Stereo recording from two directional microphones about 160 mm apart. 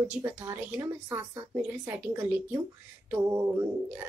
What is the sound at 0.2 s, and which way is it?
Speech, 15° right (ahead or behind).